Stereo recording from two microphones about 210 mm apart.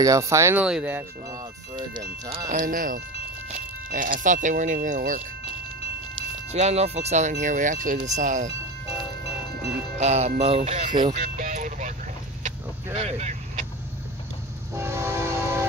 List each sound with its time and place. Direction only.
0.0 s speech: 15° right (ahead or behind)
1.8 s speech: 25° right (ahead or behind)
2.5 s speech: 40° right (ahead or behind)
6.5 s speech: 30° right (ahead or behind)
9.9 s speech: 35° right (ahead or behind)
11.3 s music: 35° right (ahead or behind)
12.9 s vehicle: 30° right (ahead or behind)
14.7 s train: 10° right (ahead or behind)